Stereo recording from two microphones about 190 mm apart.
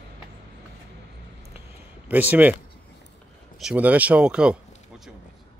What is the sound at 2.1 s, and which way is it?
Speech, 10° right (ahead or behind).